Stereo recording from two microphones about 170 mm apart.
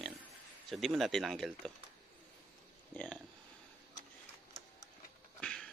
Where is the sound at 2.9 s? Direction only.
5° left (ahead or behind).